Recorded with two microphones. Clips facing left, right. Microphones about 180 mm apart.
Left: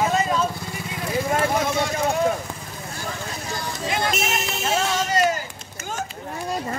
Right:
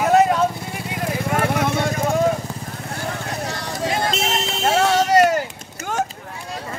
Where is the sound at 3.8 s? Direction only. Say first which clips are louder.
Right 2 dB; 35° right (ahead or behind).